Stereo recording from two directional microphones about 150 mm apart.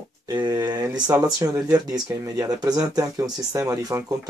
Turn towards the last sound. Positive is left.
turn(degrees=-20)  # may be behind; listen again after turning